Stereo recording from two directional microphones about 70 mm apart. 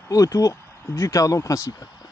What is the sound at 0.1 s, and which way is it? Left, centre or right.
Speech, left.